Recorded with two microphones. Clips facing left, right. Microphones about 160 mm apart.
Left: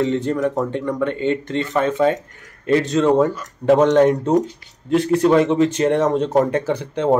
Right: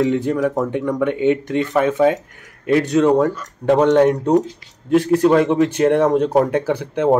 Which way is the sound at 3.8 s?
10° right (ahead or behind).